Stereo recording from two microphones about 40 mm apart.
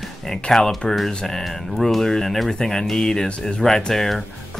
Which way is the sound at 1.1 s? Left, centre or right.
Centre.